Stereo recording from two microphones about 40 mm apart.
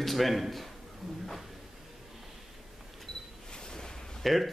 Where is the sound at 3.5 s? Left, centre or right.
Centre.